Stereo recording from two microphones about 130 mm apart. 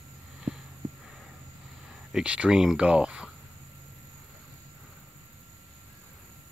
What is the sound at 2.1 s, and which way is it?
Speech, 10° right (ahead or behind).